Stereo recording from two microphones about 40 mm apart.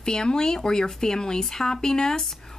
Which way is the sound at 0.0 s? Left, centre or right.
Centre.